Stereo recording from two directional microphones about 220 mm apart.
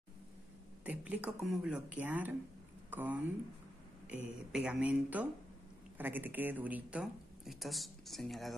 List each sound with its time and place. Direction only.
0.8 s speech: 5° right (ahead or behind)